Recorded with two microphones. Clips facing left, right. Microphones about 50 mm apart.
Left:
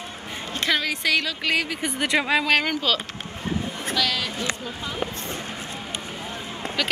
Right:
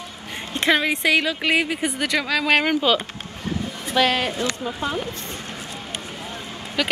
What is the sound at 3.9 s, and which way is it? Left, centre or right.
Speech, right.